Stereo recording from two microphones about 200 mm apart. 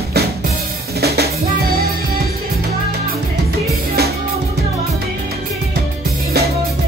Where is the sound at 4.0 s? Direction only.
55° right (ahead or behind).